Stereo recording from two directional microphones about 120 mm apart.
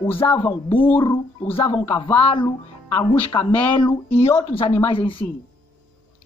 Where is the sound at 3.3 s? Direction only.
25° left (ahead or behind).